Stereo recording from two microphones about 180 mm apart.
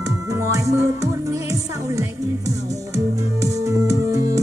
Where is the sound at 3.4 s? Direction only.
20° right (ahead or behind).